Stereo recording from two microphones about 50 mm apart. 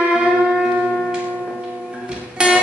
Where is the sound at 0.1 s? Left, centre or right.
Right.